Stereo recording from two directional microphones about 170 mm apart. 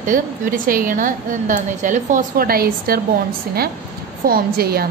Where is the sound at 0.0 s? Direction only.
55° right (ahead or behind).